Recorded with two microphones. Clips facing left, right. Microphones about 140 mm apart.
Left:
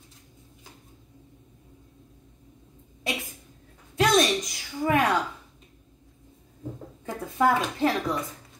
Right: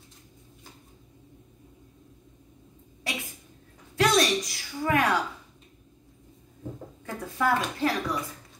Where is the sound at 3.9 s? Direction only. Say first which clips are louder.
Left 1 dB; 20° left (ahead or behind).